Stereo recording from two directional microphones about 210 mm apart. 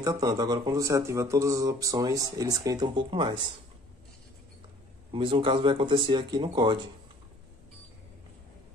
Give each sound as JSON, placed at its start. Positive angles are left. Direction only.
{"t": 0.0, "sound": "speech", "side_deg": -15}
{"t": 5.1, "sound": "speech", "side_deg": -25}